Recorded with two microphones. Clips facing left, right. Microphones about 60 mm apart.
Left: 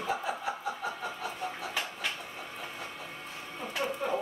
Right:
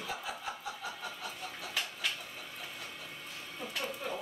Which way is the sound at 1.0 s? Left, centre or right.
Centre.